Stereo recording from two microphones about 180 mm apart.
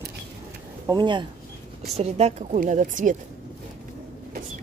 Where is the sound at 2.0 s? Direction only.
35° right (ahead or behind).